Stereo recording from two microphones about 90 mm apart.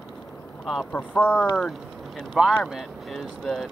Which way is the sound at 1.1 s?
15° left (ahead or behind).